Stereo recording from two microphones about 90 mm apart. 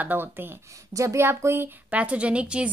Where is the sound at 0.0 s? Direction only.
20° right (ahead or behind).